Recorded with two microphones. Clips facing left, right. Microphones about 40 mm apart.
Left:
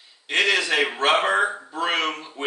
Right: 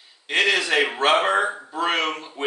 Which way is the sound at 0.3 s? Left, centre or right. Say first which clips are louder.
Right 1 dB; centre.